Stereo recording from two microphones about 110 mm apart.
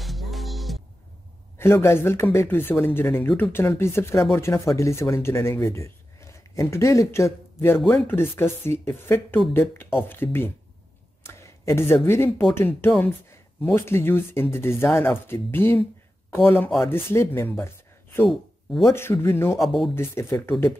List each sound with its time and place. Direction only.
0.0 s music: centre (ahead or behind)
1.6 s speech: 25° left (ahead or behind)
13.0 s a sound: 15° left (ahead or behind)
13.7 s speech: 20° left (ahead or behind)
18.3 s speech: centre (ahead or behind)
18.9 s speech: 20° left (ahead or behind)
19.6 s speech: centre (ahead or behind)
20.0 s speech: 25° left (ahead or behind)